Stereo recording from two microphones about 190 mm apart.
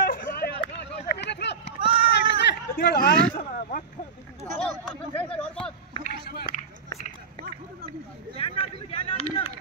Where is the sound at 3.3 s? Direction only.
50° left (ahead or behind).